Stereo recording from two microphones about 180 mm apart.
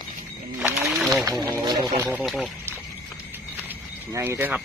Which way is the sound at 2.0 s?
5° right (ahead or behind).